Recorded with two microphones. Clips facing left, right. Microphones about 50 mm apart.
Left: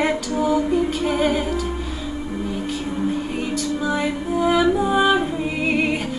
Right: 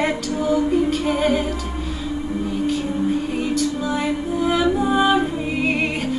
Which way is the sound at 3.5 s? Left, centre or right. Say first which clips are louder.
Left 1 dB; centre.